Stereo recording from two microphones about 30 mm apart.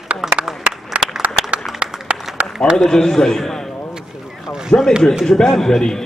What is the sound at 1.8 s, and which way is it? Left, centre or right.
Applause, right.